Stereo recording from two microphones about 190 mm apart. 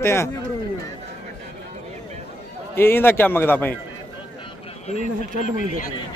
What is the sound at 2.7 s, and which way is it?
Speech, 10° left (ahead or behind).